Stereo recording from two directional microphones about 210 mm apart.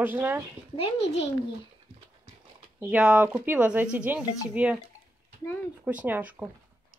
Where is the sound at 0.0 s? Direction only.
10° right (ahead or behind).